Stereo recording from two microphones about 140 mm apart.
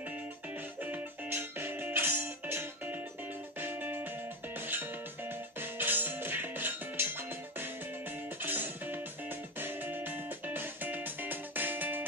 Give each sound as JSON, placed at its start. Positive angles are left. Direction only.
{"t": 0.8, "sound": "music", "side_deg": -15}